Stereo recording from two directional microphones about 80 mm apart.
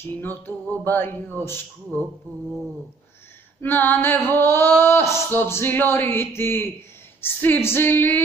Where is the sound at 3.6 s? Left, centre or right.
Left.